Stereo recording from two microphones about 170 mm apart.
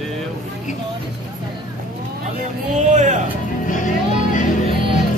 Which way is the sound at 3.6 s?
50° left (ahead or behind).